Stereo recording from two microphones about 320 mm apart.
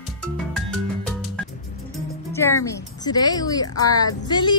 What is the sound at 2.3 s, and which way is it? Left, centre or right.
Music, centre.